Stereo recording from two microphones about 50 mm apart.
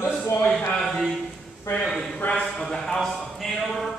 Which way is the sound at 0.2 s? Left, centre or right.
Left.